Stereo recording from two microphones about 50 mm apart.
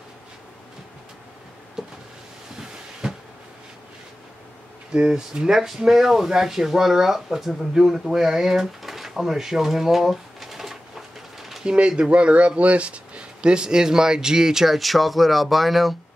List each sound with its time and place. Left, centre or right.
1.8 s power windows: centre
3.0 s a sound: centre
4.9 s speech: centre
8.0 s drawer open or close: centre
11.6 s speech: centre